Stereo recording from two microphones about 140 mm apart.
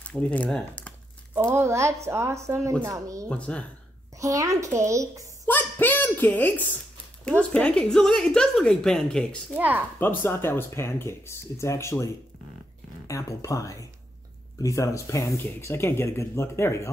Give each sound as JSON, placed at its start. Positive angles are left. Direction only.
{"t": 0.0, "sound": "speech", "side_deg": 10}
{"t": 1.3, "sound": "speech", "side_deg": -20}
{"t": 3.3, "sound": "speech", "side_deg": 10}
{"t": 4.2, "sound": "speech", "side_deg": -25}
{"t": 5.5, "sound": "a sound", "side_deg": 15}
{"t": 7.2, "sound": "a woman's voice", "side_deg": 10}
{"t": 9.5, "sound": "speech", "side_deg": -15}
{"t": 9.9, "sound": "speech", "side_deg": 15}